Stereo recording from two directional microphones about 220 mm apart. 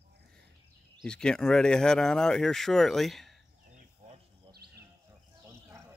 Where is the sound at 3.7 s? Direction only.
30° right (ahead or behind).